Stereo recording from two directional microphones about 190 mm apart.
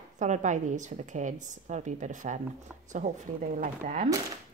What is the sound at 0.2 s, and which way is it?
Speech, 40° right (ahead or behind).